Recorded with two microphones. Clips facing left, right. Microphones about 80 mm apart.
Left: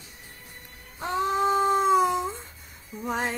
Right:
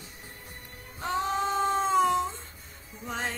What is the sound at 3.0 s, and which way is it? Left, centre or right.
Music, centre.